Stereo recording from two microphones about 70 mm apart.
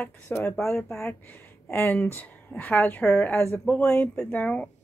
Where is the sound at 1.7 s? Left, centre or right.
Left.